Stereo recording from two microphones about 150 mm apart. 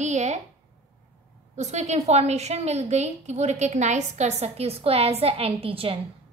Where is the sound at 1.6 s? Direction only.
50° right (ahead or behind).